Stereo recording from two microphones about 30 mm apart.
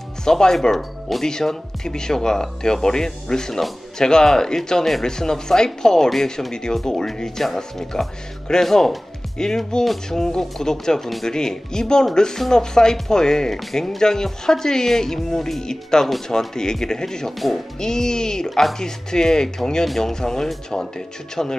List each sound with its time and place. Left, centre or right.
0.2 s speech: left
9.4 s speech: left
11.0 s speech: centre
11.2 s speech: left
13.5 s speech: centre
13.7 s speech: centre
18.5 s speech: centre
18.8 s speech: left